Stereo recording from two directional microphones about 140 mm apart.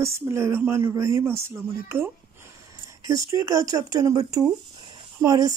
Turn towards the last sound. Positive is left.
turn(degrees=-25)  # may be behind; listen again after turning